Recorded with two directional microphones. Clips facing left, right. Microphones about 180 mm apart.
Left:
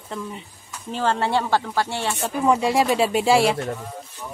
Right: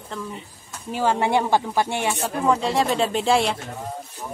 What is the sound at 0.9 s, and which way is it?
Speech, 10° right (ahead or behind).